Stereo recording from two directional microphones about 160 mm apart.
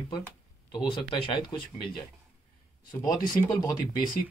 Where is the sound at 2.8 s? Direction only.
25° left (ahead or behind).